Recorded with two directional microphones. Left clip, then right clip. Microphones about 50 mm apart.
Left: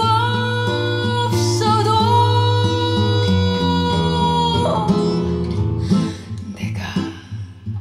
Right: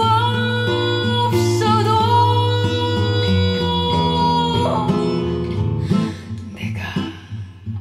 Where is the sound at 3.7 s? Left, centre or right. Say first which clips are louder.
Right 1 dB; left.